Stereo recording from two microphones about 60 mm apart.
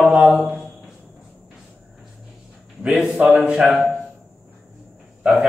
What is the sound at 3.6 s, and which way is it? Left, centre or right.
Speech, centre.